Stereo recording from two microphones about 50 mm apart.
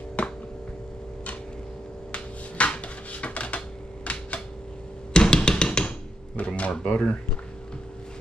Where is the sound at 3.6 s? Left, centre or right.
Left.